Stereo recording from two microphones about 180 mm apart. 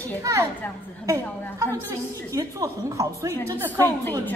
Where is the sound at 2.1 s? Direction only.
15° right (ahead or behind).